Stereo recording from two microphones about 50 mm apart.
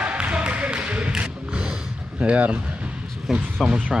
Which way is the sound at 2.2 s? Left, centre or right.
Right.